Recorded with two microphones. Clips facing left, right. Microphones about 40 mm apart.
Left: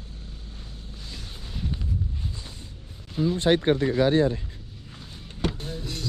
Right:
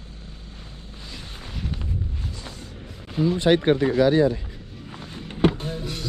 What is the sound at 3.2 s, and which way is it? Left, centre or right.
Speech, right.